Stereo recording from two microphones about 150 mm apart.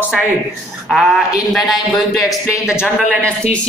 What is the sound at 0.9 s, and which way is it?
Speech, centre (ahead or behind).